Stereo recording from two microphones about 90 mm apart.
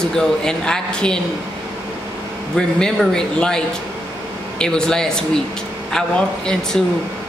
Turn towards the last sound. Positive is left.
turn(degrees=10)  # may be behind; listen again after turning